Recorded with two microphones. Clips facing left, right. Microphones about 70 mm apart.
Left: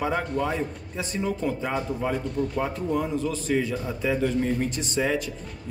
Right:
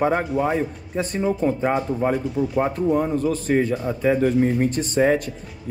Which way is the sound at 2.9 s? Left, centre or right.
Right.